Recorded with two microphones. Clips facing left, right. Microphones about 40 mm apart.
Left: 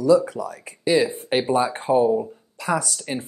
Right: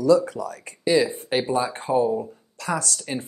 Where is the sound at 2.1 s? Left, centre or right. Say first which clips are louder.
Left 4 dB; centre.